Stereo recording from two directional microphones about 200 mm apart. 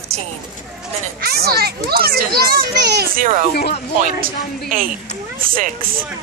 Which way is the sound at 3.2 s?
40° right (ahead or behind).